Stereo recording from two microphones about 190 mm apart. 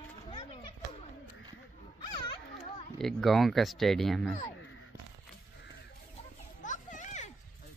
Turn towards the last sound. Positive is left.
turn(degrees=40)  # may be behind; listen again after turning